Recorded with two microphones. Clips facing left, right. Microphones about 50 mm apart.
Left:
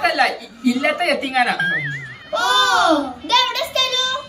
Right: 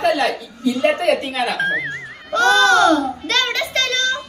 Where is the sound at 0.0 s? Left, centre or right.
Left.